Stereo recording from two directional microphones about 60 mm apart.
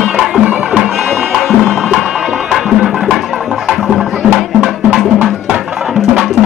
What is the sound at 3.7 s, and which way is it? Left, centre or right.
Music, centre.